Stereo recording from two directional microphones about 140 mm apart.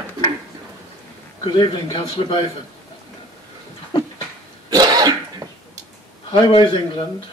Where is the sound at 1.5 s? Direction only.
35° left (ahead or behind).